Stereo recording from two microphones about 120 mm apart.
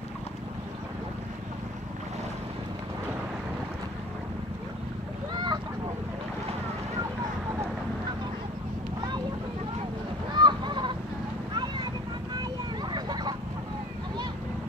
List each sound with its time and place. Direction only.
5.3 s a sound: 40° right (ahead or behind)
10.3 s goose: 40° right (ahead or behind)
11.5 s vehicle: 40° right (ahead or behind)
12.9 s vehicle: 35° right (ahead or behind)